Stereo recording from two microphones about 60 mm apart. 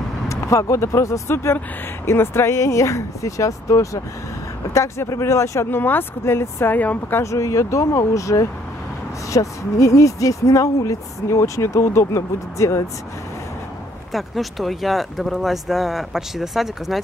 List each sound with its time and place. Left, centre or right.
0.3 s speech: left
1.3 s speech: left
5.7 s speech: left
6.7 s speech: left
7.2 s speech: left
12.2 s speech: left
14.1 s speech: centre